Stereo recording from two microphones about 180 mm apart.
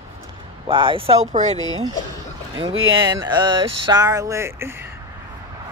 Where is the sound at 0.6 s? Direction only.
30° right (ahead or behind).